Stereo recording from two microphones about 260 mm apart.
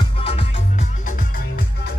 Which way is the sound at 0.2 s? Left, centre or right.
Left.